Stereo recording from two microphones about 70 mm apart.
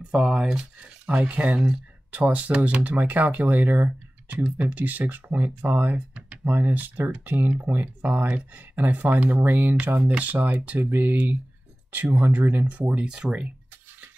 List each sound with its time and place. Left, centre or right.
0.1 s speech: centre